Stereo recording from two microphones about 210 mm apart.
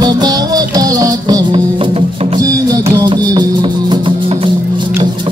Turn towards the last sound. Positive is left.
turn(degrees=-25)  # may be behind; listen again after turning